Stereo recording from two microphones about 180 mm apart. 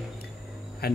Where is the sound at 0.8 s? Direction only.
60° left (ahead or behind).